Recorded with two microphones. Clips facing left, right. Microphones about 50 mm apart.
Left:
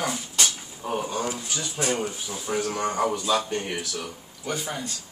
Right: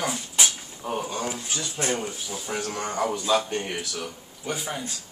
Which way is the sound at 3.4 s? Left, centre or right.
Centre.